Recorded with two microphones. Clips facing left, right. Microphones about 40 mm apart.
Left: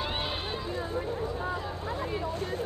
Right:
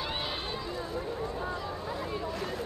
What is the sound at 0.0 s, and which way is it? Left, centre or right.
Run, centre.